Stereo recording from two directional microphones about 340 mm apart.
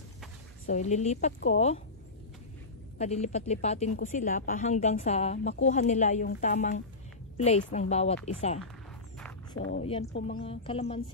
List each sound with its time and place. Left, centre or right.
0.7 s a woman's voice: left
3.0 s a woman's voice: centre
9.8 s speech: centre